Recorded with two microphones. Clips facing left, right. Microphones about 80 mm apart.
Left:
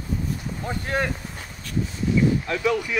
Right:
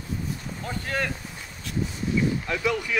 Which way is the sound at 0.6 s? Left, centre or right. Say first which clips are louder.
Left 3 dB; left.